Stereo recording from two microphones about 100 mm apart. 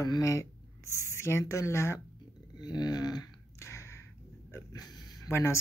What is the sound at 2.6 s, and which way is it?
Speech, 45° left (ahead or behind).